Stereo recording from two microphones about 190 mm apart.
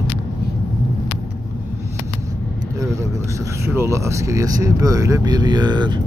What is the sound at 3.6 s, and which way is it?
Speech, 15° right (ahead or behind).